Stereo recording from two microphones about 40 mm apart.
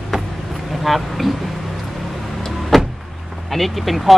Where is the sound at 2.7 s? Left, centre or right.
Centre.